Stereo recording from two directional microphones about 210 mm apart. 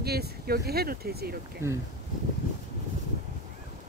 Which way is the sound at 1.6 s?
15° right (ahead or behind).